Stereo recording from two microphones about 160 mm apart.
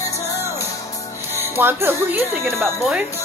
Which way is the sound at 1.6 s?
15° right (ahead or behind).